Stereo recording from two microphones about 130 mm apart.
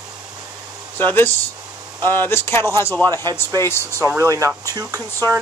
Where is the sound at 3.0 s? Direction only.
30° right (ahead or behind).